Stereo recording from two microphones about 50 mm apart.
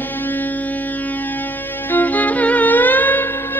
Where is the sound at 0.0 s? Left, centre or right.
Left.